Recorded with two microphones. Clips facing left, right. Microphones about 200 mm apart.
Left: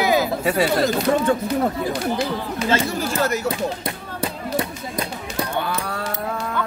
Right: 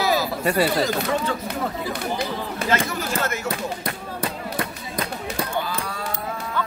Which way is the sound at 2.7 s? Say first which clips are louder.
Left 3 dB; 30° left (ahead or behind).